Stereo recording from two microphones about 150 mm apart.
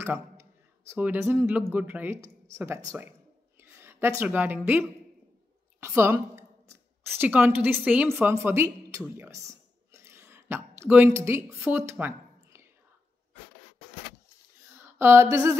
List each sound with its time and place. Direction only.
0.0 s speech: 15° right (ahead or behind)
3.6 s a sound: 15° right (ahead or behind)
4.2 s speech: 15° right (ahead or behind)
9.0 s a sound: 15° right (ahead or behind)
10.8 s speech: 15° right (ahead or behind)
15.0 s speech: 15° right (ahead or behind)